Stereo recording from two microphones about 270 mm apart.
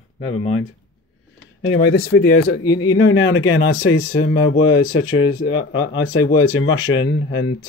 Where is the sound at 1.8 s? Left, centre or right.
Left.